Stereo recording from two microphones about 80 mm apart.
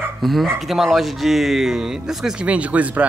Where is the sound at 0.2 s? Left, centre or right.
Centre.